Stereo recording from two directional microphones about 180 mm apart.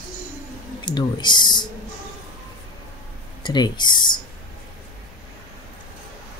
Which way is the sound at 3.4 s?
25° left (ahead or behind).